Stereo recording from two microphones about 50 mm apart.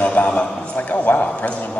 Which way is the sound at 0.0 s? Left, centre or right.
Left.